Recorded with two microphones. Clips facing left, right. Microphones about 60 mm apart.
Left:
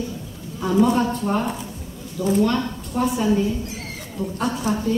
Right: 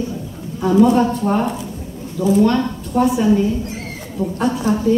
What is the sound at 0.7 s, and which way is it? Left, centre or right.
A woman's voice, centre.